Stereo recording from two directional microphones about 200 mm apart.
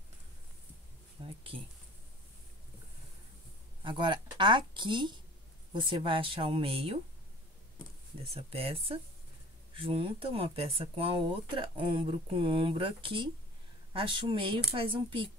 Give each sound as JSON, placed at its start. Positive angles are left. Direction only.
{"t": 1.2, "sound": "speech", "side_deg": -25}
{"t": 3.8, "sound": "speech", "side_deg": -25}
{"t": 8.4, "sound": "speech", "side_deg": -30}